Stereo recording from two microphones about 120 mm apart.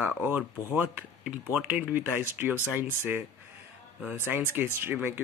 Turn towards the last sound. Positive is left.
turn(degrees=-15)  # may be behind; listen again after turning